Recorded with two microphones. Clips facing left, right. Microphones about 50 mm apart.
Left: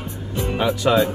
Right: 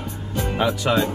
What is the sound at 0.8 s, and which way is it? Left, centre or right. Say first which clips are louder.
Speech: left 6 dB; centre.